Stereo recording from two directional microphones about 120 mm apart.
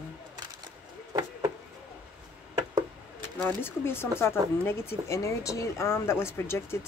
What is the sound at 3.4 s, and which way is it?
Speech, 15° left (ahead or behind).